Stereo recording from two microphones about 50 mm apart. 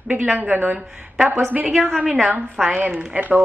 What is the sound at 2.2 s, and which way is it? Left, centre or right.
Speech, centre.